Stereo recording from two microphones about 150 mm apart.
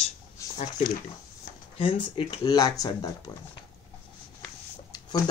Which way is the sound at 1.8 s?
35° left (ahead or behind).